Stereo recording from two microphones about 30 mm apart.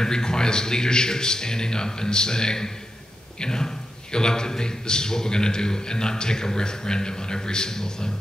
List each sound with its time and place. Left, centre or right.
0.0 s a man's voice: left